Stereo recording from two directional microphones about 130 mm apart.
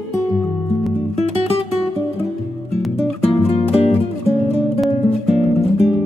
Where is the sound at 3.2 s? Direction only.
50° left (ahead or behind).